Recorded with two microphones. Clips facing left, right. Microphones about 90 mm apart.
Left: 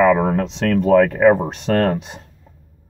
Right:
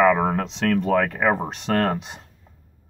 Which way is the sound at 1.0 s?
35° left (ahead or behind).